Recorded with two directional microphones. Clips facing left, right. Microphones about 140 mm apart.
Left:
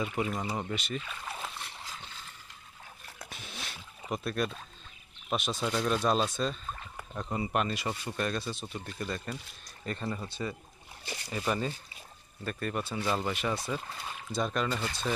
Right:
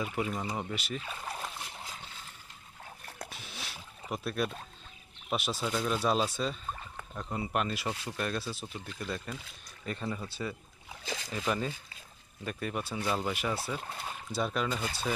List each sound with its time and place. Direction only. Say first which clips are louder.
0.0 s speech: left 1 dB; centre (ahead or behind)
3.3 s a sound: left 1 dB; 5° right (ahead or behind)
5.3 s speech: left 1 dB; 5° right (ahead or behind)
7.0 s speech: left 4 dB; 5° left (ahead or behind)
10.9 s boat: right 4 dB; 90° right
11.3 s speech: left 1 dB; centre (ahead or behind)
12.4 s speech: left 1 dB; 10° right (ahead or behind)